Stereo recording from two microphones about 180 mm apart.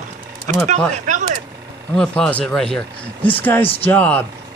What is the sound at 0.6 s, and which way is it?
Speech, 45° right (ahead or behind).